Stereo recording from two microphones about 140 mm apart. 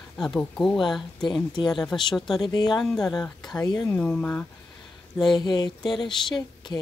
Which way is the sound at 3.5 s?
30° left (ahead or behind).